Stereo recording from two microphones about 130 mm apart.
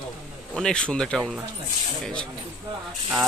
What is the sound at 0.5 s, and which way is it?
Speech, 5° left (ahead or behind).